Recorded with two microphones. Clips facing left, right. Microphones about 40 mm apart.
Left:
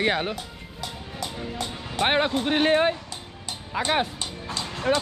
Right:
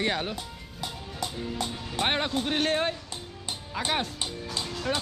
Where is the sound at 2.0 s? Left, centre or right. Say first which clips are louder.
Left 5 dB; centre.